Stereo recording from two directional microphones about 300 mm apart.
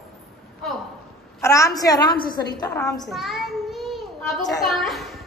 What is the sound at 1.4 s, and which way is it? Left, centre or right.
Speech, centre.